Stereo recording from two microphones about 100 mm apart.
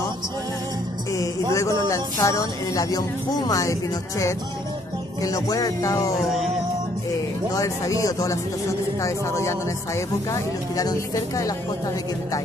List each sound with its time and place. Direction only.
1.5 s speech: 30° left (ahead or behind)
5.2 s speech: 35° left (ahead or behind)
7.5 s speech: 35° left (ahead or behind)